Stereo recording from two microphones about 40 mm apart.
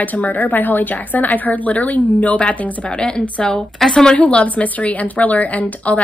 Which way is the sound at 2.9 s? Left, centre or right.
Left.